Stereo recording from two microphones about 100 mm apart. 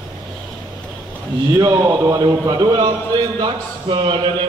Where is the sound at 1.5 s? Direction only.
40° right (ahead or behind).